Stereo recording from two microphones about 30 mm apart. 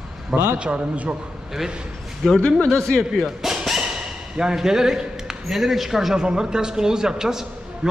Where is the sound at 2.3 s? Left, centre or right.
Left.